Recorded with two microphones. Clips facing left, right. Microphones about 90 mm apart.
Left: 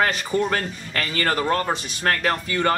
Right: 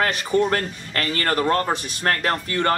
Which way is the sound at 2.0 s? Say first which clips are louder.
Left 1 dB; 35° right (ahead or behind).